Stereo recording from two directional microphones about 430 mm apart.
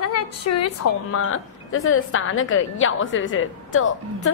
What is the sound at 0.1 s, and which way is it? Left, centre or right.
A woman's voice, left.